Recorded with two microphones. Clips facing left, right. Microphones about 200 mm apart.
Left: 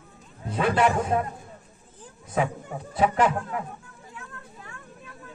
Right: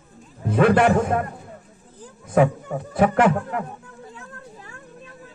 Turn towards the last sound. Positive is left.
turn(degrees=-55)  # may be behind; listen again after turning